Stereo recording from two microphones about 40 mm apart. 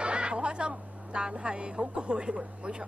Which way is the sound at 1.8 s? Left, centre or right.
Right.